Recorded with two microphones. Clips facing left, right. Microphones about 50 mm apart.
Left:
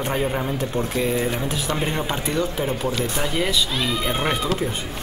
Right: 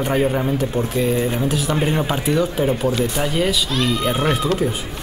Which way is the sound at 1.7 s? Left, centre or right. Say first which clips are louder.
Right 3 dB; centre.